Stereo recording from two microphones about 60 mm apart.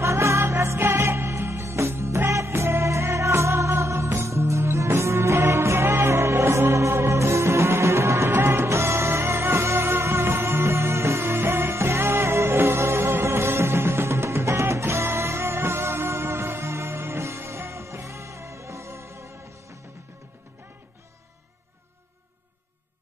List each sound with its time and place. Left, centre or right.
0.0 s music: right